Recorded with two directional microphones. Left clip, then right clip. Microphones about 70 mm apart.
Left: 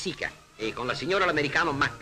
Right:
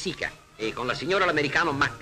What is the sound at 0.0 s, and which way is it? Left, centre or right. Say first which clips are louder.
Speech: right 1 dB; right.